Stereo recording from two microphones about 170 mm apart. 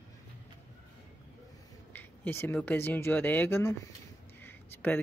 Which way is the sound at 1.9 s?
10° left (ahead or behind).